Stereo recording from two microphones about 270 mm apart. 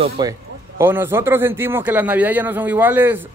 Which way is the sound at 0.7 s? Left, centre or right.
Centre.